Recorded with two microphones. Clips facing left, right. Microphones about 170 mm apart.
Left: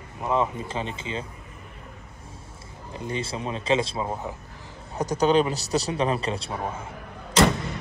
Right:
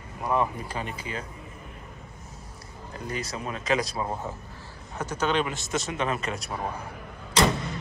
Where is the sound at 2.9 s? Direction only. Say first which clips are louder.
Left 3 dB; 25° left (ahead or behind).